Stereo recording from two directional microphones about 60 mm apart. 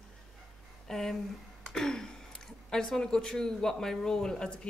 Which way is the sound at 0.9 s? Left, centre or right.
Centre.